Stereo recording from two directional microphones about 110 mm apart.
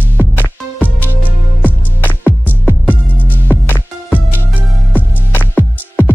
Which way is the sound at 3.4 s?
15° left (ahead or behind).